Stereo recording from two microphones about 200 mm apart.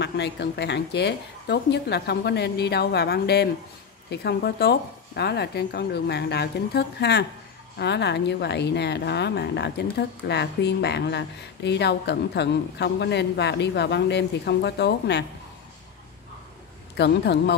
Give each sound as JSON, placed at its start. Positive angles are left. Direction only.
{"t": 0.0, "sound": "speech", "side_deg": 55}
{"t": 16.9, "sound": "speech", "side_deg": 60}